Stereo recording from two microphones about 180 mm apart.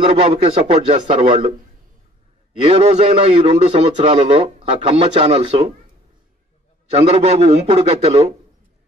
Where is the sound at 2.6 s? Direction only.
35° right (ahead or behind).